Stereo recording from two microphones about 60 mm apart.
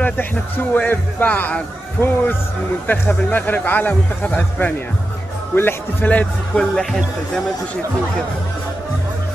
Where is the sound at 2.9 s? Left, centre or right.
Left.